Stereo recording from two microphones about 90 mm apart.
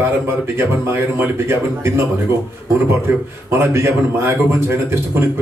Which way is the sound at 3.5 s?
30° right (ahead or behind).